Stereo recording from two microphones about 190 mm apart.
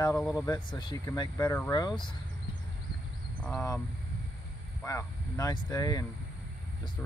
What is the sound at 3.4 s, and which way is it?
Speech, 5° left (ahead or behind).